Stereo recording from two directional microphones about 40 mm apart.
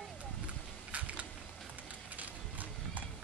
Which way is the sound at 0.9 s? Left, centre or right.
Right.